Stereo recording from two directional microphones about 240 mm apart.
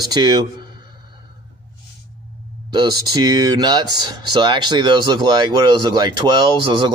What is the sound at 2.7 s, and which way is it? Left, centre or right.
Speech, centre.